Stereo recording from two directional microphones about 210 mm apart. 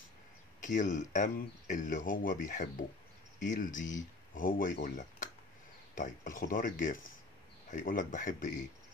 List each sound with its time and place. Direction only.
0.6 s speech: 35° left (ahead or behind)